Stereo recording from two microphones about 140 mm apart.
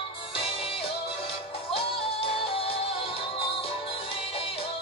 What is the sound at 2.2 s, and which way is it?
Music, 40° left (ahead or behind).